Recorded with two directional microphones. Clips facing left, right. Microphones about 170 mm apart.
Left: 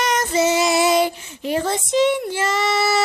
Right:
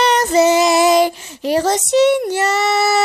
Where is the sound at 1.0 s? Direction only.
90° right; by 2.2 s 70° right (ahead or behind).